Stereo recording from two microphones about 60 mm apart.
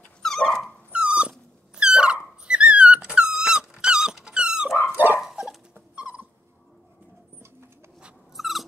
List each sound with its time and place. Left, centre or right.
0.2 s dog: centre
0.9 s dog: centre
4.9 s dog: right
5.2 s dog: centre
5.9 s dog: right
8.4 s a sound: centre